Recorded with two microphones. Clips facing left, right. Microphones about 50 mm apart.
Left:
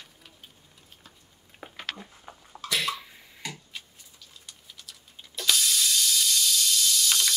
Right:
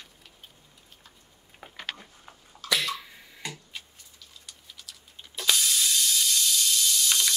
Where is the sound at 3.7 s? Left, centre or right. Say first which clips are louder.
Even; centre.